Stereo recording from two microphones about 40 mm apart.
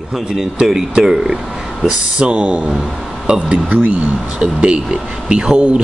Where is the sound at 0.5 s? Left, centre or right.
Centre.